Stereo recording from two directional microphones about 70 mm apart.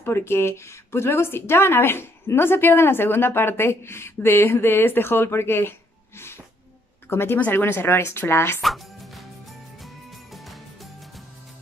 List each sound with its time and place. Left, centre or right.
0.0 s a woman's voice: left
8.5 s music: centre
10.3 s music: centre